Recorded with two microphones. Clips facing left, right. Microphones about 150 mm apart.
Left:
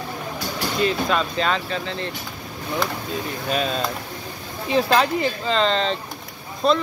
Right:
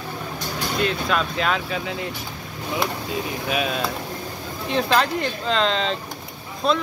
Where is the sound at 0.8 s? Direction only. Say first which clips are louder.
Left 2 dB; centre (ahead or behind).